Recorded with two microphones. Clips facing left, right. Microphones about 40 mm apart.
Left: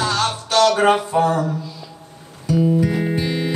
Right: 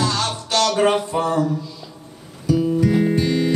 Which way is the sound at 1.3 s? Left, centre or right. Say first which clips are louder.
Even; left.